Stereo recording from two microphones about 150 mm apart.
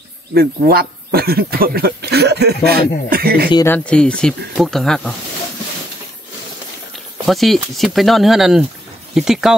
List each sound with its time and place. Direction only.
0.3 s speech: 90° right
3.6 s speech: 10° left (ahead or behind)
7.2 s speech: centre (ahead or behind)